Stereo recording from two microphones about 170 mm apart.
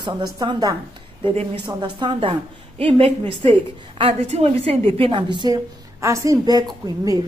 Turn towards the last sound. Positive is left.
turn(degrees=-25)  # may be behind; listen again after turning